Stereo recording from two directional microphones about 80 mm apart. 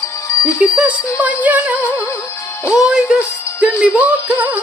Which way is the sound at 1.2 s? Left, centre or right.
Centre.